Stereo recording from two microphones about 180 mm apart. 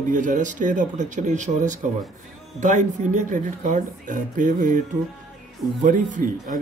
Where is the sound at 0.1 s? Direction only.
45° right (ahead or behind).